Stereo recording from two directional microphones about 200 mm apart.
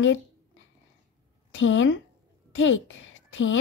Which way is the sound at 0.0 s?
70° left (ahead or behind).